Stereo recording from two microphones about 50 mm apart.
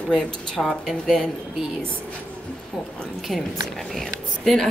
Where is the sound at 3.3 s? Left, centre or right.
Centre.